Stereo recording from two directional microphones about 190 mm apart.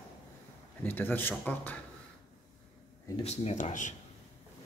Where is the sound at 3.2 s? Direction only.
35° left (ahead or behind).